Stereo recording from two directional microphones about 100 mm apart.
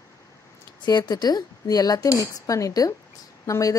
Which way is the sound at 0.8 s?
45° left (ahead or behind).